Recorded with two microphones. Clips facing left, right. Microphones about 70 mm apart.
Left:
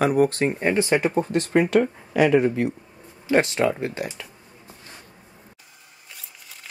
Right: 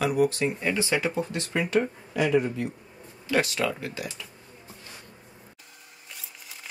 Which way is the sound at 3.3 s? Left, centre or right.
Left.